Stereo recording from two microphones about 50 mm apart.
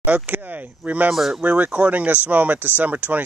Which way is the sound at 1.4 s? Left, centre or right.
Right.